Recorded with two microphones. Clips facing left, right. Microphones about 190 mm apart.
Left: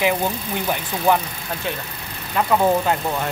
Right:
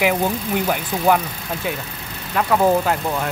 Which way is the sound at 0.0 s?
10° right (ahead or behind).